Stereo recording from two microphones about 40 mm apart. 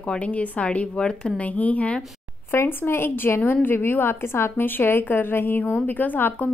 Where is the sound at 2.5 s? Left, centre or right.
Left.